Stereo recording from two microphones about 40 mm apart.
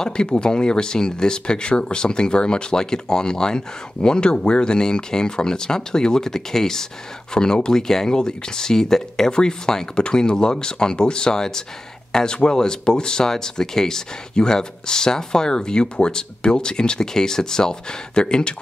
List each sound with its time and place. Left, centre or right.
0.0 s speech: left